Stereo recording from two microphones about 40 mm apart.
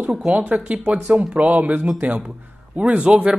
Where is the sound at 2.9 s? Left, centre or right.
Right.